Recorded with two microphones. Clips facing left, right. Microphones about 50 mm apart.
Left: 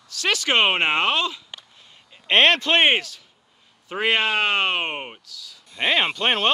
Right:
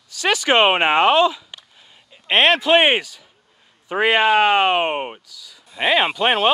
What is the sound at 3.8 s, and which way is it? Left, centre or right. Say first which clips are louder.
Speech: right 5 dB; centre.